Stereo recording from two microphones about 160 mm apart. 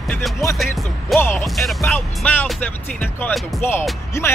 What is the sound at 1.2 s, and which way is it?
Speech, 10° left (ahead or behind).